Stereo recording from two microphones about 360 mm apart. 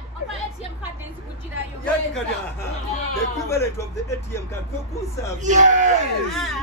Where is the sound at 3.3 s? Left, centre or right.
Centre.